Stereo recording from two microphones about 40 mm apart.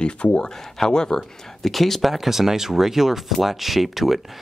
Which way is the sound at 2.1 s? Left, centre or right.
Centre.